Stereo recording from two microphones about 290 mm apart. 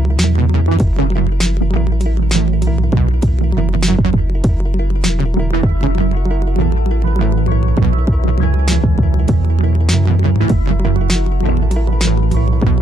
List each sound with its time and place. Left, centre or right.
3.8 s music: centre
12.0 s music: centre